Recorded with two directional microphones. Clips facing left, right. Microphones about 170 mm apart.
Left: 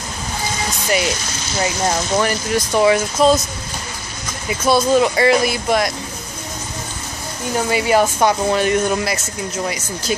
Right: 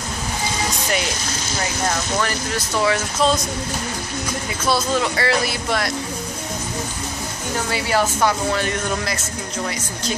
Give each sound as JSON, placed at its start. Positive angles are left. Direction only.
{"t": 1.6, "sound": "speech", "side_deg": 20}
{"t": 4.6, "sound": "speech", "side_deg": 15}
{"t": 7.7, "sound": "speech", "side_deg": 20}